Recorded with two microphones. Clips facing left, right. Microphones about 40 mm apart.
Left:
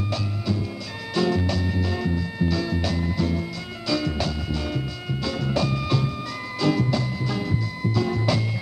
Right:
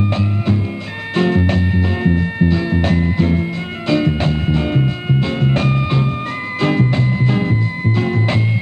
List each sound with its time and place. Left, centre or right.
0.1 s music: right